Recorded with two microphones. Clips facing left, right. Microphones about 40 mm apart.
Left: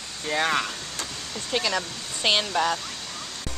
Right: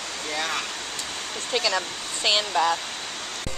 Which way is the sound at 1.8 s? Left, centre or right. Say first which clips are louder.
Right 2 dB; right.